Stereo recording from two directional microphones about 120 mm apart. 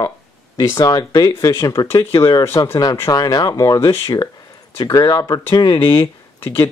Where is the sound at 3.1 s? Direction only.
35° left (ahead or behind).